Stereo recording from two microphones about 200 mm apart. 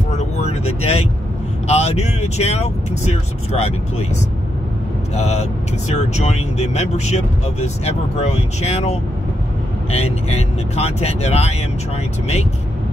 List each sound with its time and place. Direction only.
0.2 s vehicle: 35° left (ahead or behind)
1.7 s speech: 30° left (ahead or behind)
5.1 s speech: 35° left (ahead or behind)